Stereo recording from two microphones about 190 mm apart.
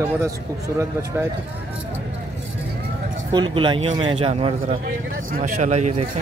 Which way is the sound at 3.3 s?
25° right (ahead or behind).